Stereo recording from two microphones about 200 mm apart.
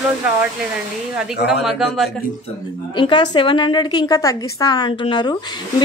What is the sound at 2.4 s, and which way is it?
Speech, 25° left (ahead or behind).